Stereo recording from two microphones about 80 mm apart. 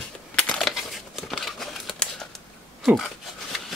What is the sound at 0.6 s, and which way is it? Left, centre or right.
Crumpling, centre.